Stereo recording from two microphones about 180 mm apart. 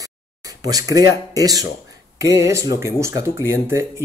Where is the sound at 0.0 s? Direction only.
20° right (ahead or behind).